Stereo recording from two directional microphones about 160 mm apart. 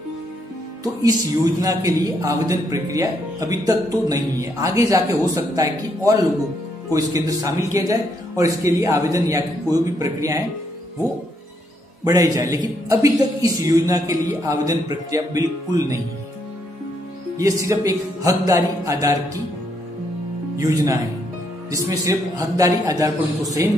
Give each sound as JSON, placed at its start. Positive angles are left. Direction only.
{"t": 1.0, "sound": "speech", "side_deg": -20}
{"t": 12.0, "sound": "speech", "side_deg": -20}
{"t": 17.4, "sound": "speech", "side_deg": -20}
{"t": 20.5, "sound": "speech", "side_deg": -20}